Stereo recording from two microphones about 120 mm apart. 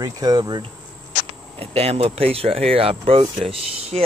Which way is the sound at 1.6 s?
55° right (ahead or behind).